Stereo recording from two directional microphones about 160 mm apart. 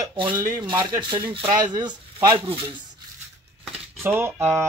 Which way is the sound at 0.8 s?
30° right (ahead or behind).